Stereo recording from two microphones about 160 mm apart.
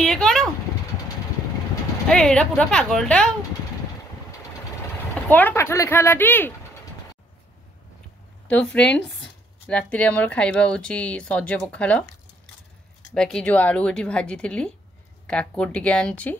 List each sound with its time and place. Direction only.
0.0 s a sound: centre (ahead or behind)
2.0 s speech: 5° left (ahead or behind)
5.3 s speech: 15° left (ahead or behind)
8.5 s speech: 5° left (ahead or behind)
13.1 s speech: 5° left (ahead or behind)